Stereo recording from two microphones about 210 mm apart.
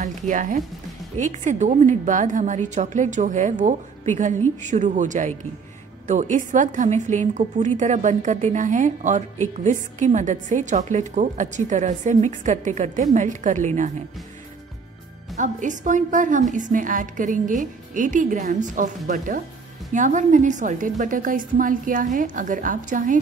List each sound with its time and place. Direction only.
0.0 s a woman's voice: 40° right (ahead or behind)
15.3 s a woman's voice: 35° right (ahead or behind)